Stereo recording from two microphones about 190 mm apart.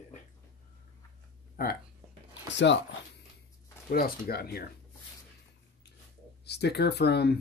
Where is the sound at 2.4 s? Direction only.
70° left (ahead or behind).